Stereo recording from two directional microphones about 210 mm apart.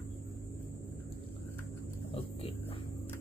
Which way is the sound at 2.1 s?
25° left (ahead or behind).